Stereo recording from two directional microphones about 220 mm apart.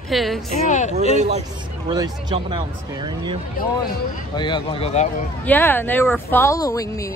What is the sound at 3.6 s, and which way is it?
Speech, 40° left (ahead or behind).